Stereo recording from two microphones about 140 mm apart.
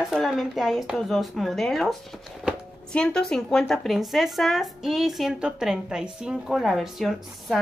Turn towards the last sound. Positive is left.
turn(degrees=0)  # may be behind; listen again after turning